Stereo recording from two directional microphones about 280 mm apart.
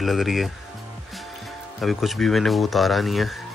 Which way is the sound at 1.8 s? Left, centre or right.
Centre.